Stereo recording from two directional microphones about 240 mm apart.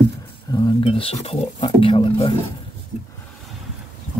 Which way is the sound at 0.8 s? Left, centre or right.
Left.